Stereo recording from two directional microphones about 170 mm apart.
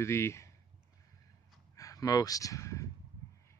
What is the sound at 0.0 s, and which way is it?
Speech, 15° left (ahead or behind).